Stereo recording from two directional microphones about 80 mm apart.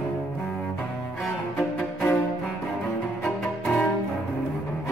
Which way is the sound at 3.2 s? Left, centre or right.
Centre.